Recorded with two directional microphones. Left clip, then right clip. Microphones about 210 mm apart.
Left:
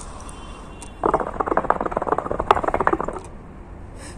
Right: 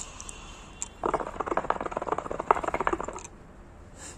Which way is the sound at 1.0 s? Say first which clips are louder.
Left 9 dB; 15° right (ahead or behind).